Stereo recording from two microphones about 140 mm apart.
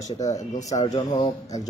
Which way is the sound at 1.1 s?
55° left (ahead or behind).